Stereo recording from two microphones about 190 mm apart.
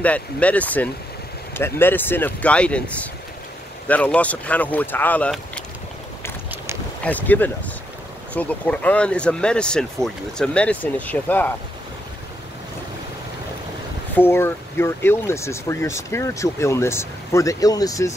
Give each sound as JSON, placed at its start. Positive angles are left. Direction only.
{"t": 0.0, "sound": "speech", "side_deg": 5}
{"t": 7.0, "sound": "speech", "side_deg": 10}
{"t": 14.1, "sound": "speech", "side_deg": 10}